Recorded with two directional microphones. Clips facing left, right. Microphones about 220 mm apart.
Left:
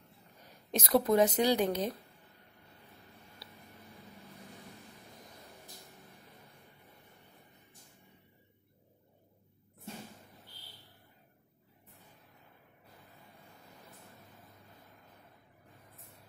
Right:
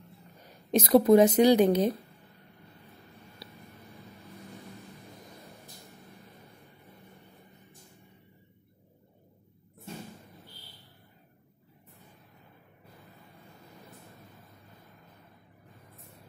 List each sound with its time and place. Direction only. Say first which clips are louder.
0.7 s a woman's voice: right 8 dB; 15° right (ahead or behind)